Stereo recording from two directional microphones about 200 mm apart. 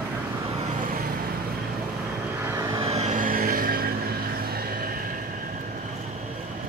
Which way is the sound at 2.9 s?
35° right (ahead or behind).